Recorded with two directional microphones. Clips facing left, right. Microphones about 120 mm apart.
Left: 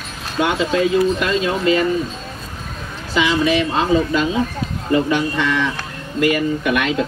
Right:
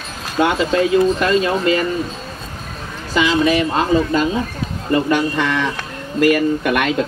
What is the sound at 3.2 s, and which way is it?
Speech, 45° right (ahead or behind).